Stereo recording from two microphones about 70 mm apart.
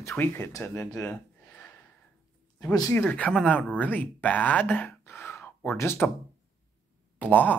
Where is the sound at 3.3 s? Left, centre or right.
Centre; by 6.1 s left.